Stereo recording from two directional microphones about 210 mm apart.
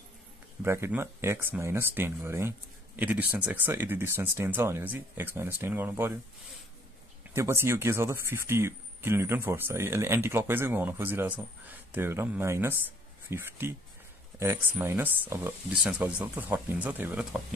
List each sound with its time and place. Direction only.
0.6 s speech: 10° right (ahead or behind)